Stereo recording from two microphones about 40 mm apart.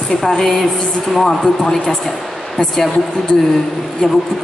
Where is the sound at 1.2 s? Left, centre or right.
Centre.